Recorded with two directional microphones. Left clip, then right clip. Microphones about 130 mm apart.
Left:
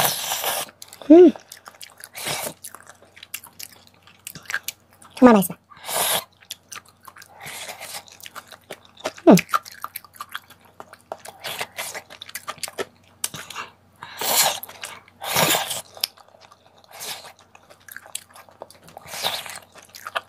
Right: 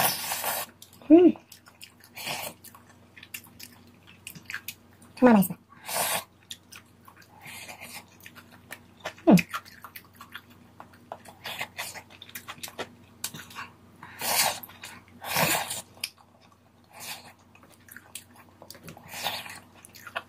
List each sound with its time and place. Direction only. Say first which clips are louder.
0.0 s a sound: left 5 dB; 55° left (ahead or behind)
3.2 s drip: left 5 dB; 60° left (ahead or behind)
4.2 s chewing: left 9 dB; 55° left (ahead or behind)
11.1 s a sound: left 6 dB; 60° left (ahead or behind)
18.6 s dog: left 7 dB; 55° left (ahead or behind)
19.0 s biting: left 6 dB; 55° left (ahead or behind)